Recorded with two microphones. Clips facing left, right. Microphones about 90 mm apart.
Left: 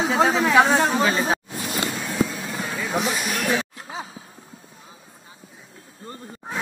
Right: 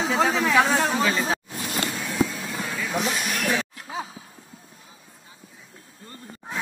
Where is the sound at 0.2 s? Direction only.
20° left (ahead or behind).